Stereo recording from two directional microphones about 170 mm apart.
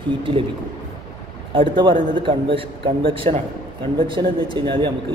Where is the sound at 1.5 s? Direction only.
30° right (ahead or behind).